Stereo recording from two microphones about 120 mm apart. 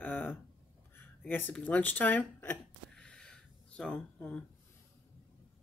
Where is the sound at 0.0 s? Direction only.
15° left (ahead or behind).